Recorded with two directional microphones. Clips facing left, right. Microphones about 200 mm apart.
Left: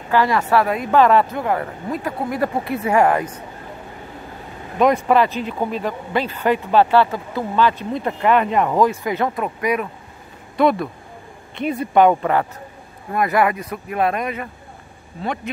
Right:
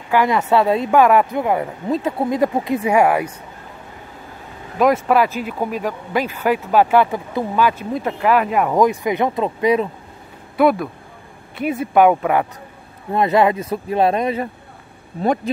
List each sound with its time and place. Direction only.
0.1 s speech: 15° right (ahead or behind)
0.9 s speech: 10° right (ahead or behind)
4.7 s speech: centre (ahead or behind); by 9.8 s 25° right (ahead or behind)
10.6 s speech: 5° right (ahead or behind)
13.1 s speech: 25° right (ahead or behind)